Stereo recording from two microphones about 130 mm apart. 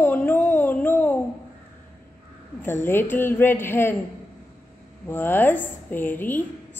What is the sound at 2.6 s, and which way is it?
A woman's voice, 15° left (ahead or behind).